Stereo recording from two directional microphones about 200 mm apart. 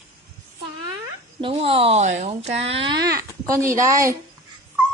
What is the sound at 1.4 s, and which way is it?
Speech, 25° right (ahead or behind).